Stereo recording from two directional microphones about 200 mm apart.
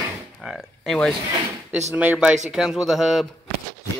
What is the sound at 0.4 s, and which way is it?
Speech, centre (ahead or behind).